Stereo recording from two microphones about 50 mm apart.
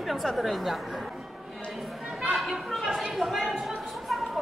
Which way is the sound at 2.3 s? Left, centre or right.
Centre.